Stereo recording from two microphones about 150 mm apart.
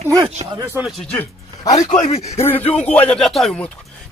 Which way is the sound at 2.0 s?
45° left (ahead or behind).